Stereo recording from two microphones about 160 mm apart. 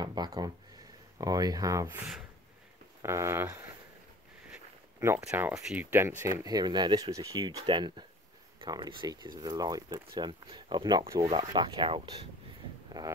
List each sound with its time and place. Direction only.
0.0 s a sound: 25° right (ahead or behind)
1.1 s speech: 25° right (ahead or behind)
3.0 s speech: 15° right (ahead or behind)
5.0 s speech: 15° right (ahead or behind)